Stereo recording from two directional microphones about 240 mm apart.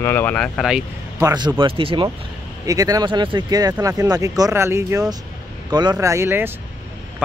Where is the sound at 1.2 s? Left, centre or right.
Centre.